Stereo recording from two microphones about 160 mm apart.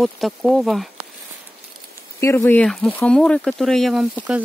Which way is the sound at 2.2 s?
15° left (ahead or behind).